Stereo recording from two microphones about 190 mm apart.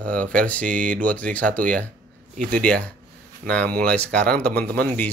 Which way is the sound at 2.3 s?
45° right (ahead or behind).